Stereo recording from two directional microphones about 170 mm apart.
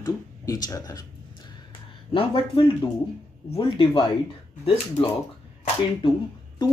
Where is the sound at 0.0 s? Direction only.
20° left (ahead or behind).